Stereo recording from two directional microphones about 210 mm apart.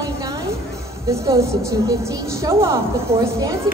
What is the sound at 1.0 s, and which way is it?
Speech, 15° right (ahead or behind).